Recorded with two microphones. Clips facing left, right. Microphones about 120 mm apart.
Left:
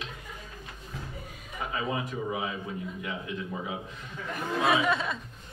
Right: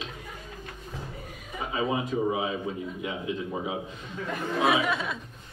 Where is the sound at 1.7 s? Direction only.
20° right (ahead or behind).